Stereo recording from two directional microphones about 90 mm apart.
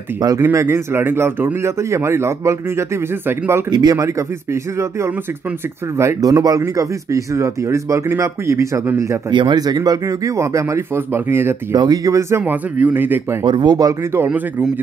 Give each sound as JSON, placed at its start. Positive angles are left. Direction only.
{"t": 0.4, "sound": "speech", "side_deg": -30}
{"t": 3.7, "sound": "speech", "side_deg": -45}
{"t": 6.2, "sound": "speech", "side_deg": -40}
{"t": 9.3, "sound": "speech", "side_deg": -60}
{"t": 11.7, "sound": "speech", "side_deg": -50}
{"t": 13.4, "sound": "speech", "side_deg": -60}
{"t": 14.1, "sound": "speech", "side_deg": -25}